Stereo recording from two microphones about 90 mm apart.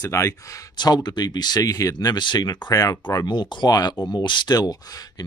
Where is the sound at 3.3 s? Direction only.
50° left (ahead or behind).